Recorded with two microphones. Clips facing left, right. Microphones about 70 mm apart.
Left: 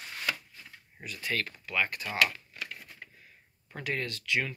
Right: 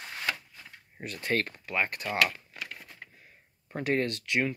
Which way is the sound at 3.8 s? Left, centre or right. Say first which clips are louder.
Right 6 dB; right.